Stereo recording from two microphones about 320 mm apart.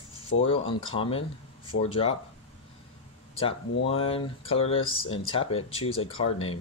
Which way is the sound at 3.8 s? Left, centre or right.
Centre.